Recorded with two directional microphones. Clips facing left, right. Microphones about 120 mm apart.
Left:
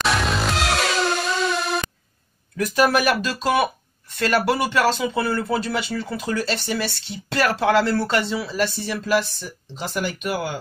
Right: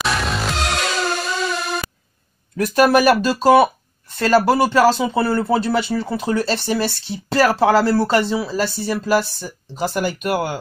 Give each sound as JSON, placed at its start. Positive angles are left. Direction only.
{"t": 0.0, "sound": "music", "side_deg": 0}
{"t": 2.5, "sound": "speech", "side_deg": -40}